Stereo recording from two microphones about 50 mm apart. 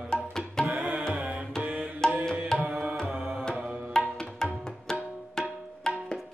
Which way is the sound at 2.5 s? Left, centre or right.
Centre.